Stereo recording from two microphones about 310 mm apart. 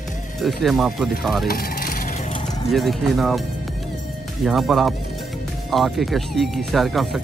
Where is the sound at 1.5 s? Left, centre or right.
Left.